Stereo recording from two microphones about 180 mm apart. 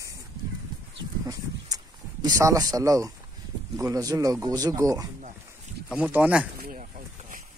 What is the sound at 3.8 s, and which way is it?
Speech, 20° right (ahead or behind).